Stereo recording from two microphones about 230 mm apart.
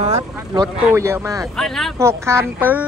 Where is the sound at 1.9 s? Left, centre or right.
Centre.